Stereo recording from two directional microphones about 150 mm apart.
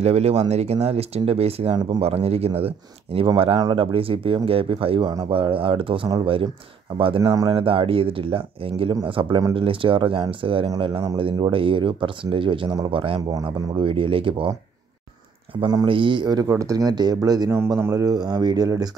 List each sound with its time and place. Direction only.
0.0 s speech: 45° right (ahead or behind)
15.6 s speech: 30° right (ahead or behind)